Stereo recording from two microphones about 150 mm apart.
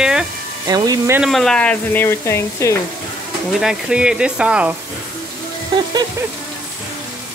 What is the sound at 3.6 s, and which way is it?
Speech, 5° right (ahead or behind).